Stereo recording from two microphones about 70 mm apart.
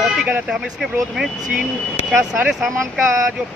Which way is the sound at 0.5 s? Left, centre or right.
Centre.